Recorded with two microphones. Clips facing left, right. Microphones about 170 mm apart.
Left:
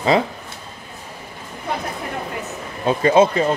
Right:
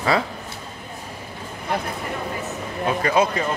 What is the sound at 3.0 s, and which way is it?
Speech, 25° left (ahead or behind).